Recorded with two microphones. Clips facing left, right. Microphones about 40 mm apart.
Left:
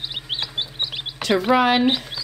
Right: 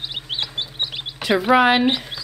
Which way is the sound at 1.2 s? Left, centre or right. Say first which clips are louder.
Right 2 dB; centre.